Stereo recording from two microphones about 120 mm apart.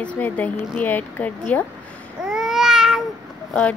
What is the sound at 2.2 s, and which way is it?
Babbling, 5° right (ahead or behind).